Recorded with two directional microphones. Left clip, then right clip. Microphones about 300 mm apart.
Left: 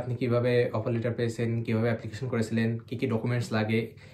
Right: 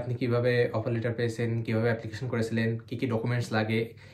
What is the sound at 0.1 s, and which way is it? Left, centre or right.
Speech, centre.